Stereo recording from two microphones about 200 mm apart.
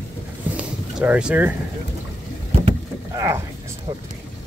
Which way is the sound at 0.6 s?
5° right (ahead or behind).